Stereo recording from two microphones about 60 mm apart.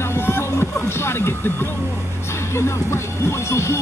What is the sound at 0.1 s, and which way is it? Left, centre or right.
Music, left.